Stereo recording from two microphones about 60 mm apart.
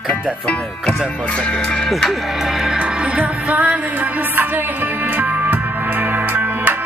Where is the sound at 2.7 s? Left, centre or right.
Centre.